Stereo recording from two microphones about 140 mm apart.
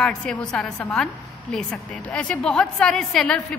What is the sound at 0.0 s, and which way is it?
A woman's voice, 5° left (ahead or behind).